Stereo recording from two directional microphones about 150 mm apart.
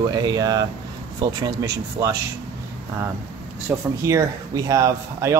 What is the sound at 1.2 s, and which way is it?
Speech, 25° right (ahead or behind).